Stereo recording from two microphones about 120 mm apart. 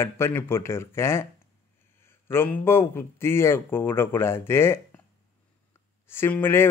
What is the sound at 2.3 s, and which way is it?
A man's voice, 20° left (ahead or behind).